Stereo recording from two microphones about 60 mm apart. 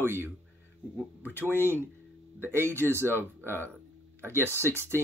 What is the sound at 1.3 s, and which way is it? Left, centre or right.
Speech, right.